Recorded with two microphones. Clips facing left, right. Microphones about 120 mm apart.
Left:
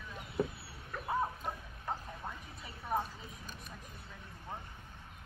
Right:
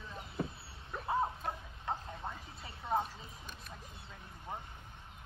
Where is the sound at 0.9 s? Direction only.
25° right (ahead or behind).